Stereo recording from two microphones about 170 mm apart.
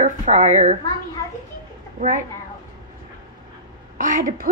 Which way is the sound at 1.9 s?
45° right (ahead or behind).